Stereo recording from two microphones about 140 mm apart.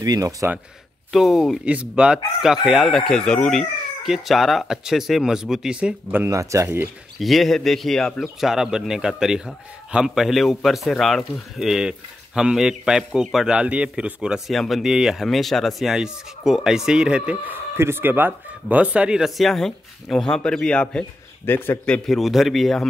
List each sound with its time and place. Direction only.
0.0 s speech: 25° right (ahead or behind)
1.1 s a man's voice: centre (ahead or behind)
6.2 s speech: 20° right (ahead or behind)
7.2 s a man's voice: centre (ahead or behind)